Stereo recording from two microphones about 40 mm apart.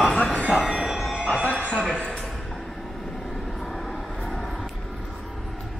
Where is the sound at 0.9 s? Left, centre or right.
Centre.